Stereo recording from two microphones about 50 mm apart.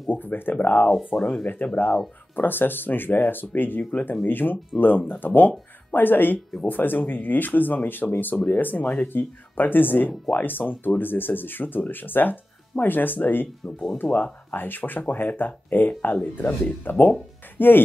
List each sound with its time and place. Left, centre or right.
0.1 s speech: left
9.1 s speech: left